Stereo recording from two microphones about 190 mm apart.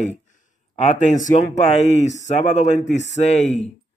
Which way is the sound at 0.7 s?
40° left (ahead or behind).